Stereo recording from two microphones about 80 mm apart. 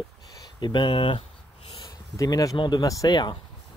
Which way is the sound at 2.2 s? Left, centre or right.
Left.